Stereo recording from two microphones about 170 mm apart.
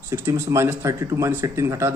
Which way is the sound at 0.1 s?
15° right (ahead or behind).